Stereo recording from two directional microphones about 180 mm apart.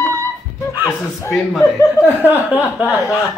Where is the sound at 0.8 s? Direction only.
15° left (ahead or behind).